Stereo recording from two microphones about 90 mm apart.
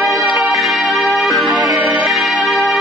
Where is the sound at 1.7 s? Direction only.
15° right (ahead or behind).